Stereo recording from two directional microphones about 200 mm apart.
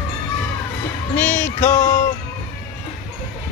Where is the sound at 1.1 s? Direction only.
10° left (ahead or behind).